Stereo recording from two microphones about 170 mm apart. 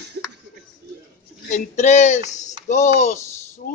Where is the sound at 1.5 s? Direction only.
40° left (ahead or behind).